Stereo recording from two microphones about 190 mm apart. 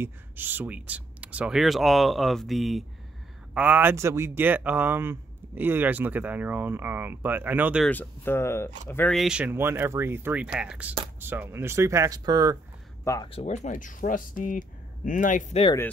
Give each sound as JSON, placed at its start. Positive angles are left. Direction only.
{"t": 0.0, "sound": "speech", "side_deg": -10}
{"t": 7.9, "sound": "speech", "side_deg": 10}
{"t": 13.0, "sound": "speech", "side_deg": 15}
{"t": 13.3, "sound": "speech", "side_deg": 35}